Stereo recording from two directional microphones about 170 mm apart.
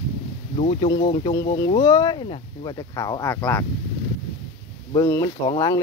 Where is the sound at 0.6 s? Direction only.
40° left (ahead or behind).